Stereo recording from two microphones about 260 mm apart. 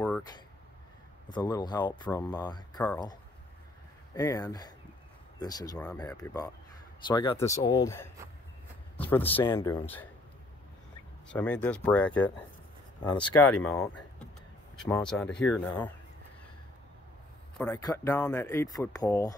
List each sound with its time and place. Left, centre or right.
1.3 s speech: centre
11.3 s speech: centre
13.0 s speech: centre
13.3 s speech: centre
17.6 s speech: centre